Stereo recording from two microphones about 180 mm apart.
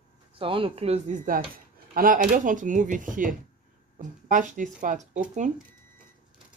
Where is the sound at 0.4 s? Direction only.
30° right (ahead or behind).